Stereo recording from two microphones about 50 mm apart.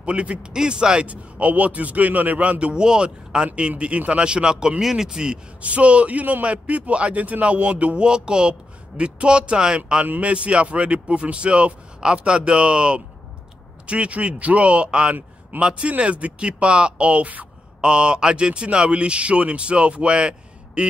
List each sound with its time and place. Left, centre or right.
0.0 s a man's voice: right
5.6 s a man's voice: right